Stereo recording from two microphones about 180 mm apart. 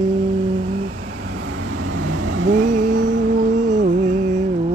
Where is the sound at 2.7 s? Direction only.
45° right (ahead or behind).